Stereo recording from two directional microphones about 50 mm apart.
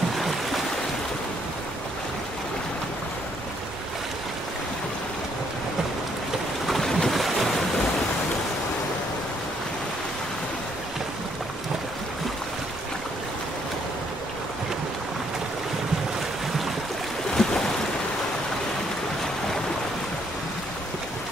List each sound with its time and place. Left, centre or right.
6.7 s boat: centre
7.2 s waves: centre
17.3 s boat: centre